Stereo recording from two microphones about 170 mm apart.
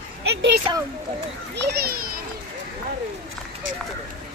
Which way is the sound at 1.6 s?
70° right (ahead or behind).